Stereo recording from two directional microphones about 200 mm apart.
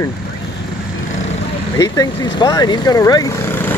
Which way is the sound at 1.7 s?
15° left (ahead or behind).